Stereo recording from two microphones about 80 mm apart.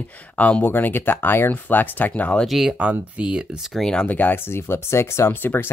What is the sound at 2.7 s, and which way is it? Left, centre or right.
Speech, centre.